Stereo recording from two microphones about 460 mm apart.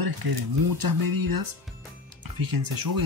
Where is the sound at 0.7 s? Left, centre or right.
Right.